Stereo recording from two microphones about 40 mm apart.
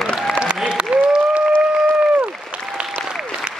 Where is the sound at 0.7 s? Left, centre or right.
Right.